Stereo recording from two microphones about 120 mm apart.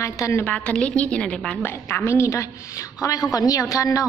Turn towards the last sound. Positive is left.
turn(degrees=30)  # may be behind; listen again after turning